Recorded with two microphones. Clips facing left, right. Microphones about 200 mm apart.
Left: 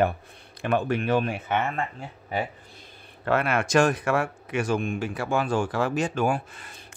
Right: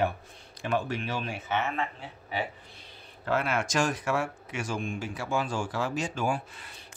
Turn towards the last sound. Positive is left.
turn(degrees=55)  # may be behind; listen again after turning